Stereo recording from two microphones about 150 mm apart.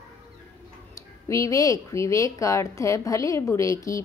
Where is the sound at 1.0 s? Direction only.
20° left (ahead or behind).